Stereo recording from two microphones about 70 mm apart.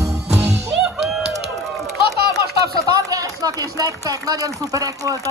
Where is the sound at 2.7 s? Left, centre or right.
Right.